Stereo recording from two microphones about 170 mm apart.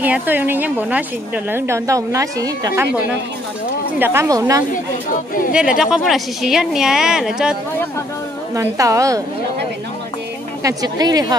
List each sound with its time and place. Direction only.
0.0 s a woman's voice: 10° right (ahead or behind)
4.0 s a woman's voice: 15° right (ahead or behind)
5.1 s speech: 55° left (ahead or behind)
5.5 s a woman's voice: 5° right (ahead or behind)
8.5 s speech: 20° right (ahead or behind)
10.6 s speech: 20° right (ahead or behind)